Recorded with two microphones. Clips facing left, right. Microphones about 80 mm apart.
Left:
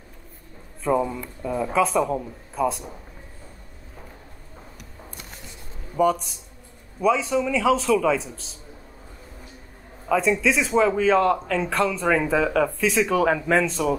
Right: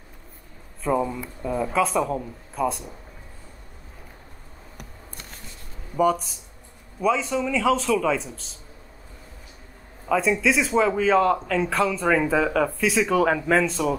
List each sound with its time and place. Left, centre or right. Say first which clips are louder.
0.8 s a man's voice: left 1 dB; centre
5.9 s a man's voice: even; centre
10.0 s a man's voice: left 1 dB; centre